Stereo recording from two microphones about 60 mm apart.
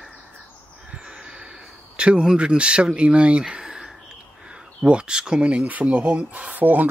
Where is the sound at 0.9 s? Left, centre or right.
Centre.